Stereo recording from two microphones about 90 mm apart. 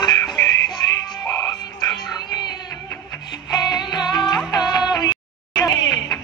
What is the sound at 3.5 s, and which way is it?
Music, 50° left (ahead or behind).